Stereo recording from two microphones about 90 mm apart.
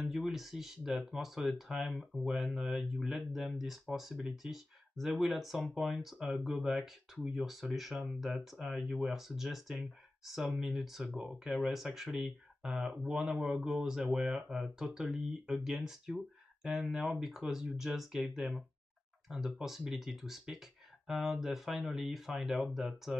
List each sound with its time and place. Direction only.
0.0 s speech: centre (ahead or behind)